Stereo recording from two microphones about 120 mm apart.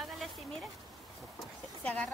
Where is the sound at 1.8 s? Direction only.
10° left (ahead or behind).